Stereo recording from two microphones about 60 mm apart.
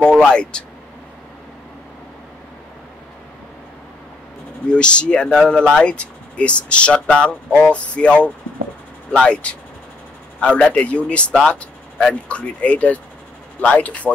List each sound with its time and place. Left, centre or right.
0.0 s speech: centre
4.6 s speech: centre